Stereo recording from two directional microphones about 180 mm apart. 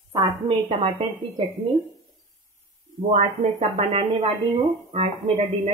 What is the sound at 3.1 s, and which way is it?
Speech, 40° right (ahead or behind).